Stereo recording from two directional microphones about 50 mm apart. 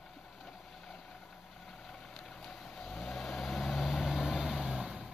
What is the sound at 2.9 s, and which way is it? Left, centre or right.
Vehicle, centre.